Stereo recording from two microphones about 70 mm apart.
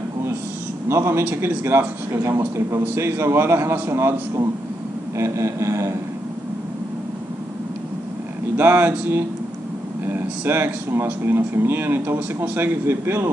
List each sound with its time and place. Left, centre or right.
0.8 s speech: right
5.1 s a sound: right
8.5 s speech: right